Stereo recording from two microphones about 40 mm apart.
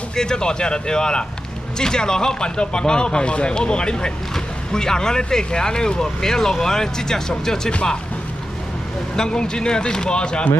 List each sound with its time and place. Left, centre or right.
0.1 s speech: centre
9.1 s speech: centre